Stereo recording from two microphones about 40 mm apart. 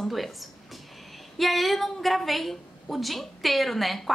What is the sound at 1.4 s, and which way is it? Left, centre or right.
A woman's voice, centre.